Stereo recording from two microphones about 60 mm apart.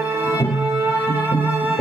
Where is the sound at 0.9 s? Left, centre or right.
Right.